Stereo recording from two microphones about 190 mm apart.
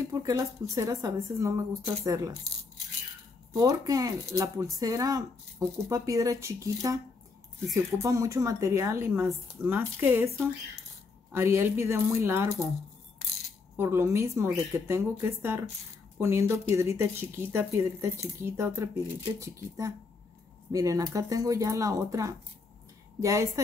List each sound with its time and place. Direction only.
0.1 s speech: 20° right (ahead or behind)
3.5 s speech: 20° right (ahead or behind)
11.3 s speech: 15° right (ahead or behind)
13.7 s speech: 15° right (ahead or behind)
20.7 s speech: 15° right (ahead or behind)